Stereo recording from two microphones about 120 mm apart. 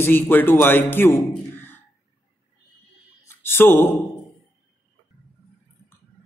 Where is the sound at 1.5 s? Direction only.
15° left (ahead or behind).